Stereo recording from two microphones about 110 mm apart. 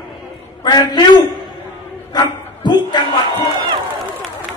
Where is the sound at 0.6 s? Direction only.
40° left (ahead or behind).